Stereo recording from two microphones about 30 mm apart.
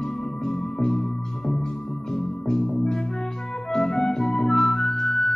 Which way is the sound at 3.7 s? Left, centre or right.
Centre.